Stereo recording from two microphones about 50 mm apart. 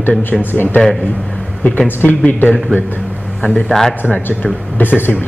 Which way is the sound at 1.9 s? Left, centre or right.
Left.